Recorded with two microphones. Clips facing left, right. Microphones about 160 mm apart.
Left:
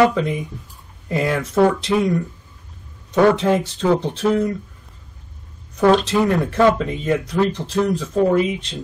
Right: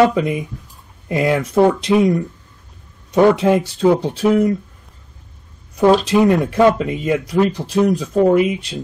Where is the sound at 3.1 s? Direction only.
10° right (ahead or behind).